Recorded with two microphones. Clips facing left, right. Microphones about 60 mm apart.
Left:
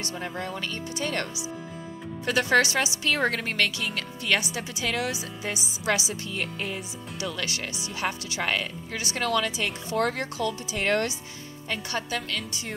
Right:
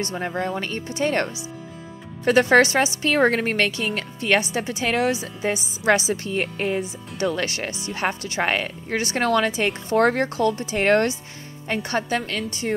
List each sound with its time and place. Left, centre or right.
0.0 s a woman's voice: right